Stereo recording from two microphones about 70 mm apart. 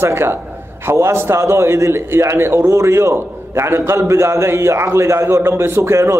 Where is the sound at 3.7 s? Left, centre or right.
Right.